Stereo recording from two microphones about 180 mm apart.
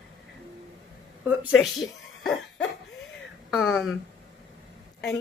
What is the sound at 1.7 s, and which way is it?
Cough, centre (ahead or behind).